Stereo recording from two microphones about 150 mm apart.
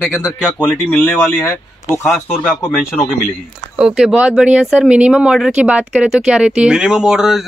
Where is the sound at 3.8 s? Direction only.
5° right (ahead or behind).